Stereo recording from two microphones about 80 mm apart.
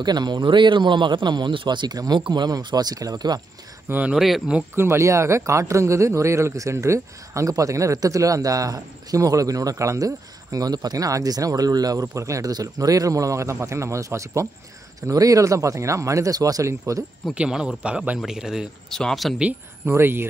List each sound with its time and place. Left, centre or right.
0.0 s a man's voice: right
4.1 s speech: centre
4.7 s a man's voice: right
17.3 s a man's voice: centre
18.9 s speech: centre
19.9 s speech: right